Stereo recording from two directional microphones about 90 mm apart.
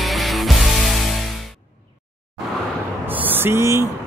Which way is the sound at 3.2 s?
25° right (ahead or behind).